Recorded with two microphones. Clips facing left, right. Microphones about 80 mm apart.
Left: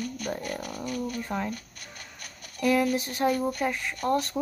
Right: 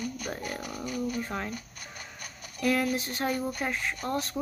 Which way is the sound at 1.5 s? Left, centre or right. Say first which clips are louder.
Left 2 dB; centre.